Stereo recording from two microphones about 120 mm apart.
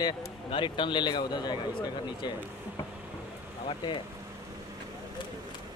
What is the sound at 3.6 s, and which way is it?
Speech, 40° left (ahead or behind).